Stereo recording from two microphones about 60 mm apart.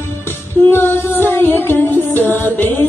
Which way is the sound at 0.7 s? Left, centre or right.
Left.